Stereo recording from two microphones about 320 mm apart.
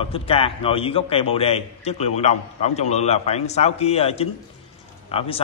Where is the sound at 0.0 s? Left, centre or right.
Centre.